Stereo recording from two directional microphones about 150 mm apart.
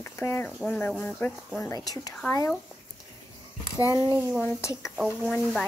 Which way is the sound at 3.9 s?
25° right (ahead or behind).